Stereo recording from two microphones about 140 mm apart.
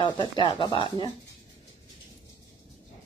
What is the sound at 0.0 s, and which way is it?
Speech, 40° left (ahead or behind).